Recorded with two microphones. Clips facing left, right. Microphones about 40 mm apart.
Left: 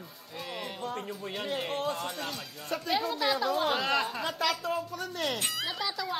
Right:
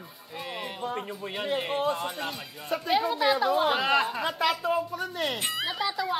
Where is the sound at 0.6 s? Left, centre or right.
Centre.